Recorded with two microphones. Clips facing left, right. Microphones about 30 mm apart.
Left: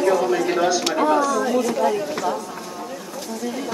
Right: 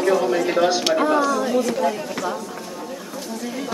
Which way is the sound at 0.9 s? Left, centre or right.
Centre.